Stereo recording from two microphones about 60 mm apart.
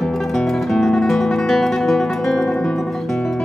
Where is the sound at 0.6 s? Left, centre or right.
Centre.